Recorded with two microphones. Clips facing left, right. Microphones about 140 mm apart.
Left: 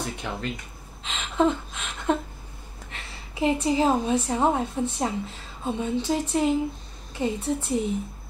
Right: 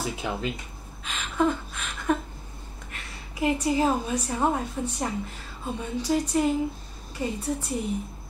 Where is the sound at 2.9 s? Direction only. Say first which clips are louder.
Left 2 dB; 25° left (ahead or behind).